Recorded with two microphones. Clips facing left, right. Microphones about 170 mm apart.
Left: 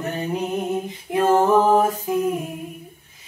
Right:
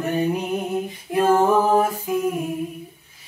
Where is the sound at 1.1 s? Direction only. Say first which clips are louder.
Even; 20° left (ahead or behind).